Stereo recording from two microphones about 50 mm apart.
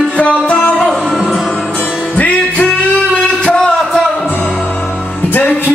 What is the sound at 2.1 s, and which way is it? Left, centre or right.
Music, left.